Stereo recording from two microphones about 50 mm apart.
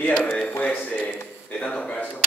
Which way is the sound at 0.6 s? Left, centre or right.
Left.